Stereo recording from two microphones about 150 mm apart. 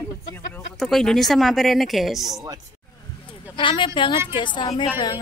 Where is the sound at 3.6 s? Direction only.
35° left (ahead or behind).